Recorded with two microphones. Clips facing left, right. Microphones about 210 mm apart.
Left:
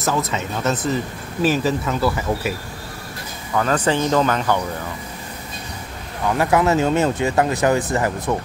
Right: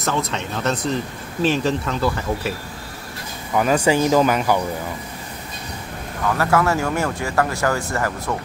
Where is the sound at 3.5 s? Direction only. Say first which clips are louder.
Right 2 dB; 10° right (ahead or behind).